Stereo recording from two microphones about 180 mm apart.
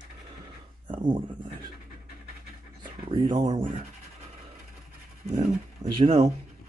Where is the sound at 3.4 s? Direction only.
35° right (ahead or behind).